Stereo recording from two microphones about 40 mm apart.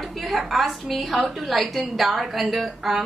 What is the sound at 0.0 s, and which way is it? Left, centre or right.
A woman's voice, centre.